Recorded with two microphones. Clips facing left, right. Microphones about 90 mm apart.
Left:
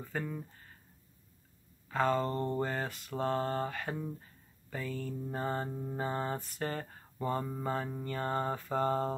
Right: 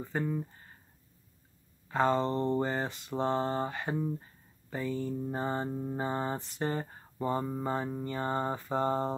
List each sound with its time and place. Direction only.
0.0 s speech: 10° right (ahead or behind)
2.0 s speech: 20° right (ahead or behind)
2.8 s speech: centre (ahead or behind)
3.2 s speech: 15° right (ahead or behind)